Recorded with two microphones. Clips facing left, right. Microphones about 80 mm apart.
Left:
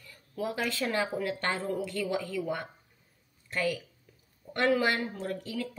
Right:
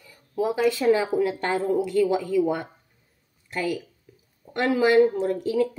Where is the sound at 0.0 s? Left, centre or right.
Centre.